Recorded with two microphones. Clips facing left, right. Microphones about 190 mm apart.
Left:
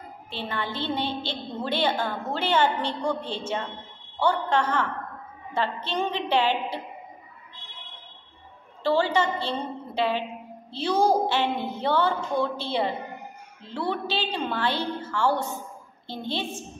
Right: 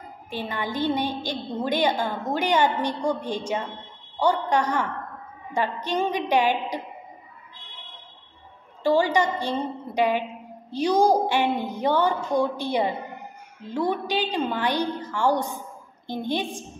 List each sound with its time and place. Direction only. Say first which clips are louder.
0.3 s a woman's voice: right 2 dB; 15° right (ahead or behind)
8.8 s a woman's voice: right 2 dB; 15° right (ahead or behind)